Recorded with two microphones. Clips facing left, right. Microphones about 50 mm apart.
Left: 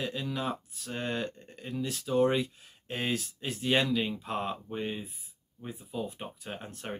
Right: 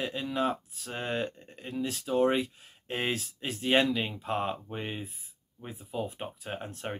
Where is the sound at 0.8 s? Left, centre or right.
Centre.